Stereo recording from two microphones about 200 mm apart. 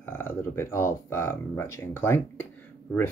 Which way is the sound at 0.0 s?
10° left (ahead or behind).